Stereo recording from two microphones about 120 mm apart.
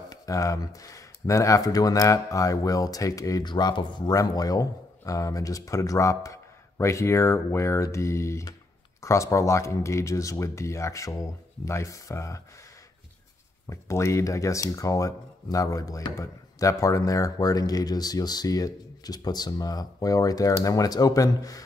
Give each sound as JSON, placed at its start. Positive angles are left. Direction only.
{"t": 0.1, "sound": "speech", "side_deg": 30}
{"t": 13.7, "sound": "speech", "side_deg": 25}